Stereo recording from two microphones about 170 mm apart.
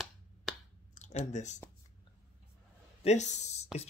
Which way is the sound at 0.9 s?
45° left (ahead or behind).